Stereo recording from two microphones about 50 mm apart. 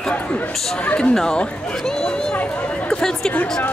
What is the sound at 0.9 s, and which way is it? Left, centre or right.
Speech, centre.